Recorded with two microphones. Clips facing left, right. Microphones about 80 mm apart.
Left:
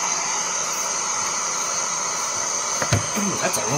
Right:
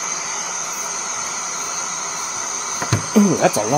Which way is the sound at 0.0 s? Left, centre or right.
Centre.